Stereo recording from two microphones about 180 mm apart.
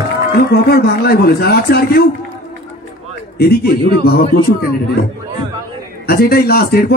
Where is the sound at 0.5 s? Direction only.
60° left (ahead or behind).